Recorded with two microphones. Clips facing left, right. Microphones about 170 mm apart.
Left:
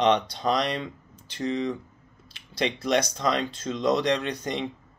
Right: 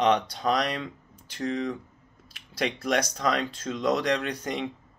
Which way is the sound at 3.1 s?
5° right (ahead or behind).